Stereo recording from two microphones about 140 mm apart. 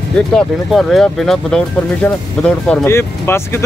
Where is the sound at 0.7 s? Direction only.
5° left (ahead or behind).